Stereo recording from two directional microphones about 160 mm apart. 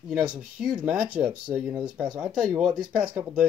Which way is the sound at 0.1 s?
5° right (ahead or behind).